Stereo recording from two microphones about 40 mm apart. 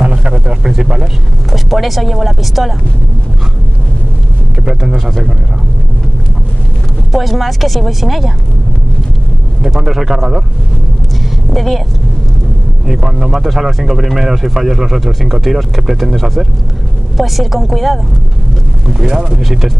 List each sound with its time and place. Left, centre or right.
0.0 s a sound: right
0.3 s a sound: centre
1.5 s speech: centre
4.6 s speech: centre
7.1 s speech: centre
9.8 s speech: centre
11.5 s speech: centre
12.8 s speech: centre
18.9 s speech: centre